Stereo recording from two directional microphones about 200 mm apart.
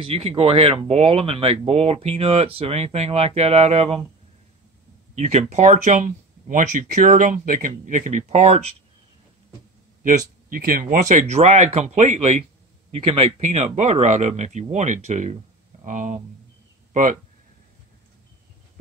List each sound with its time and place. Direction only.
0.0 s speech: 30° right (ahead or behind)
5.1 s speech: 35° right (ahead or behind)
10.0 s speech: 45° right (ahead or behind)